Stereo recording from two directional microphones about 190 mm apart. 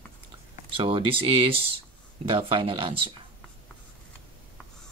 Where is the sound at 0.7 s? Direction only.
30° right (ahead or behind).